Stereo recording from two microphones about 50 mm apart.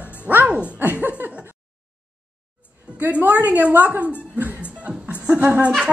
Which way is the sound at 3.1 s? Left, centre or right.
Right.